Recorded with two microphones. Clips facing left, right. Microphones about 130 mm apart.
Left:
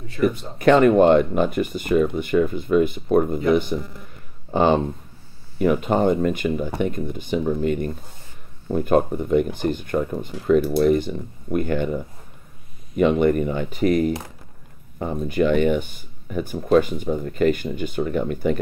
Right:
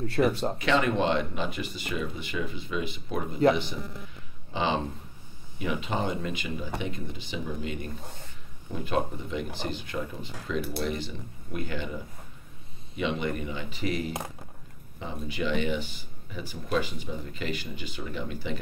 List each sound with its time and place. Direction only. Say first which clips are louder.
0.2 s speech: left 4 dB; 55° right (ahead or behind)
0.6 s speech: left 14 dB; 50° left (ahead or behind)